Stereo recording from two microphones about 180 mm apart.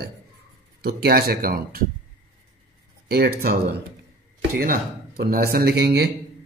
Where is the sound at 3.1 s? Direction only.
55° right (ahead or behind).